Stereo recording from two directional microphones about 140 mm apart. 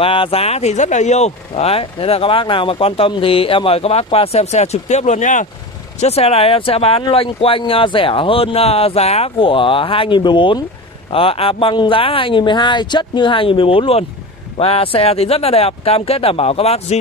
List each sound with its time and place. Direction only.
0.0 s speech: 40° left (ahead or behind); by 5.5 s 65° left (ahead or behind)
5.9 s speech: 50° left (ahead or behind)